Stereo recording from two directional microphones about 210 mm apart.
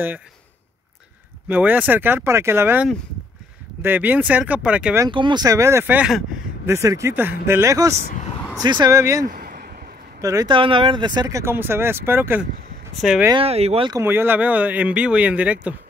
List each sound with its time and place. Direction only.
1.5 s speech: 10° right (ahead or behind)
5.0 s speech: 20° right (ahead or behind)
8.0 s speech: 35° left (ahead or behind)
8.6 s speech: 20° right (ahead or behind)
9.3 s a sound: 45° right (ahead or behind)
10.2 s speech: 15° right (ahead or behind)
13.3 s speech: 30° right (ahead or behind); by 15.7 s 5° right (ahead or behind)